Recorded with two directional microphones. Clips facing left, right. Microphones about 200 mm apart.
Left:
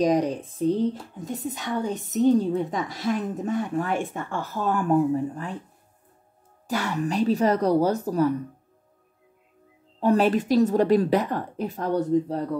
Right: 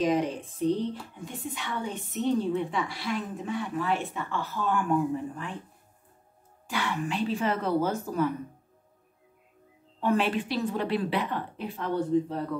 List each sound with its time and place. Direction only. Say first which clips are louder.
0.0 s a woman's voice: left 4 dB; 40° left (ahead or behind)
6.7 s a woman's voice: left 5 dB; 40° left (ahead or behind)
9.9 s a woman's voice: left 6 dB; 40° left (ahead or behind)